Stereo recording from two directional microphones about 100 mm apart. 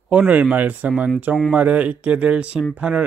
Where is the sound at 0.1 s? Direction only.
15° right (ahead or behind).